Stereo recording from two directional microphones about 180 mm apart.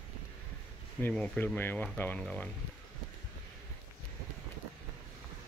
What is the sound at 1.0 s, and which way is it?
Speech, 5° left (ahead or behind).